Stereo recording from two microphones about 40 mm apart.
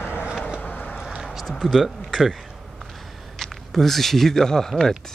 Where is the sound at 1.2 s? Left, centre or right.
Centre.